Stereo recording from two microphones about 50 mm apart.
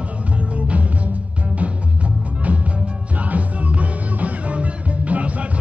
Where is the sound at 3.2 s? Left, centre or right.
Right.